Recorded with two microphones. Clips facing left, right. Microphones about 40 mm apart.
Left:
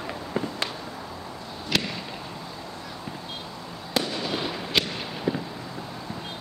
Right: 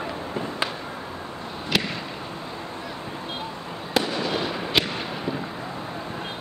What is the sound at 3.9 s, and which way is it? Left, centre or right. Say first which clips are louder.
Fireworks: right 3 dB; centre.